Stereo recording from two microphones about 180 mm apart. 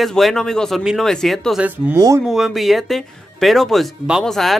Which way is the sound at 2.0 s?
20° right (ahead or behind).